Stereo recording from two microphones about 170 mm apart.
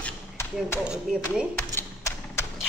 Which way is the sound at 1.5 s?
15° left (ahead or behind).